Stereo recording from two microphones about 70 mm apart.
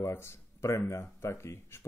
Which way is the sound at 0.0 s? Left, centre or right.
Left.